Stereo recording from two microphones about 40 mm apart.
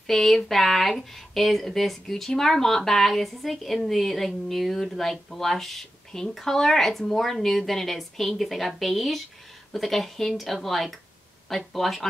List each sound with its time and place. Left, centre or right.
0.0 s speech: centre